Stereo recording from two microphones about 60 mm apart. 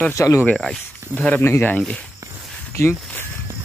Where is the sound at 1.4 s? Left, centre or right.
Left.